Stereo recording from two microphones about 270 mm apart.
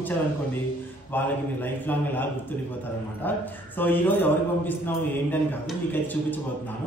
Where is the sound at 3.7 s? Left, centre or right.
Centre.